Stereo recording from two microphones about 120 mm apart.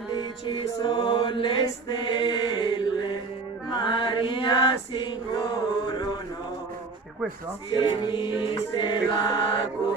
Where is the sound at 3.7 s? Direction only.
40° left (ahead or behind).